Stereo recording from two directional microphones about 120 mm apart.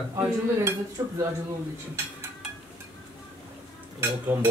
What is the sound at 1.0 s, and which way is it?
Speech, 25° right (ahead or behind).